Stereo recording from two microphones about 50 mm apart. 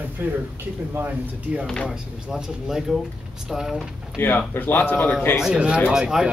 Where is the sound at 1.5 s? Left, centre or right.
Right.